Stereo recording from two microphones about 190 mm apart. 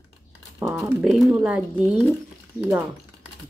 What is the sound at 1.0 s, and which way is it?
Speech, centre (ahead or behind).